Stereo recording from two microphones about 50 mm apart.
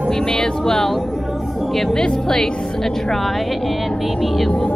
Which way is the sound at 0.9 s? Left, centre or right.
Centre.